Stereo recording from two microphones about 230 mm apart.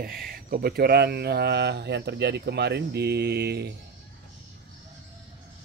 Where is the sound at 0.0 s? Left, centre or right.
Right.